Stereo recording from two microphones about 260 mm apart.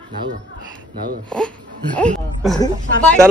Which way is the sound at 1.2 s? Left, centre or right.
Centre.